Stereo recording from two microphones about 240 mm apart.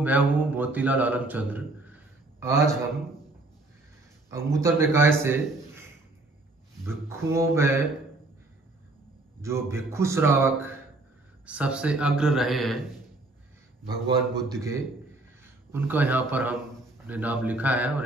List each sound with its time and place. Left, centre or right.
0.0 s speech: centre
4.3 s a man's voice: centre
7.1 s speech: centre
9.4 s a man's voice: centre
13.8 s speech: centre